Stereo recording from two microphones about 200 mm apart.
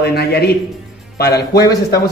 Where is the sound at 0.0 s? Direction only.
50° left (ahead or behind).